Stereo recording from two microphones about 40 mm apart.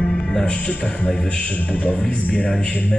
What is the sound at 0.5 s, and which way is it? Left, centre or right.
Speech, left.